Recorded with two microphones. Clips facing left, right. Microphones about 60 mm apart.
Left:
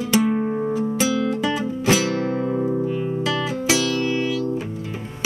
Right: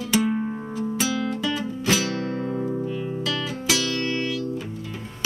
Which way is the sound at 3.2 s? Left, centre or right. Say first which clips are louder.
Left 4 dB; left.